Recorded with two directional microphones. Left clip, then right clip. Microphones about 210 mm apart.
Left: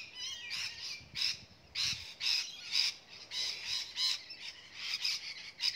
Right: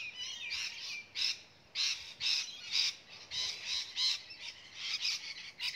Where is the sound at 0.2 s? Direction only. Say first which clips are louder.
Left 1 dB; 55° left (ahead or behind).